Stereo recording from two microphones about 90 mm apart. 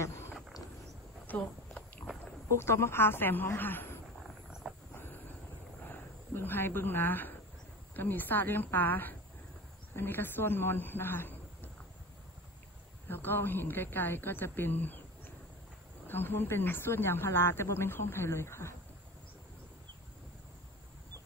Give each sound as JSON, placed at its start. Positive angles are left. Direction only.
{"t": 0.0, "sound": "wild animals", "side_deg": 30}
{"t": 1.2, "sound": "walk", "side_deg": 20}
{"t": 2.5, "sound": "speech", "side_deg": 30}
{"t": 4.6, "sound": "a sound", "side_deg": -5}
{"t": 5.9, "sound": "speech", "side_deg": 20}
{"t": 13.1, "sound": "speech", "side_deg": 25}
{"t": 16.1, "sound": "speech", "side_deg": 25}